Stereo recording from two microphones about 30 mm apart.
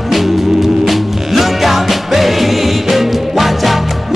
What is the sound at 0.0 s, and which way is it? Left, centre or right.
Music, centre.